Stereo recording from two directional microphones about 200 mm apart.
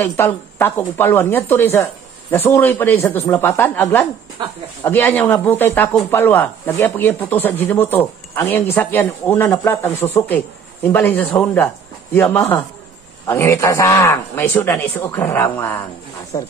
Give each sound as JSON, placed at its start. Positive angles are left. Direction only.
{"t": 0.0, "sound": "a man's voice", "side_deg": 10}